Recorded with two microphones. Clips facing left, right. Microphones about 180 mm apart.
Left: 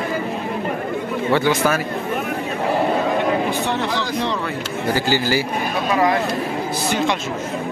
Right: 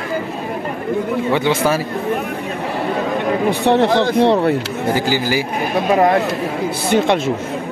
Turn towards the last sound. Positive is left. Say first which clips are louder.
# right 5 dB
turn(degrees=-60)  # may be behind; listen again after turning